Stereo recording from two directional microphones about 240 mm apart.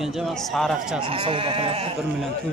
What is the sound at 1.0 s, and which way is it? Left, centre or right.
Speech, right.